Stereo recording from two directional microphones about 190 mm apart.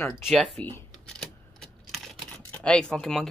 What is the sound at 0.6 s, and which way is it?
Speech, 10° left (ahead or behind).